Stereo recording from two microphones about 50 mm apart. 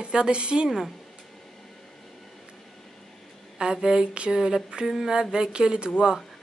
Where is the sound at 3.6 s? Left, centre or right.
Centre.